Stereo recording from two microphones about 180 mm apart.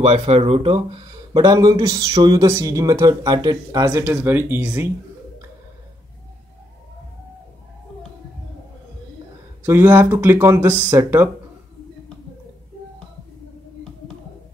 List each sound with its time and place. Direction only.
0.0 s speech: 35° right (ahead or behind)
1.3 s speech: 20° right (ahead or behind)
9.6 s speech: 15° right (ahead or behind)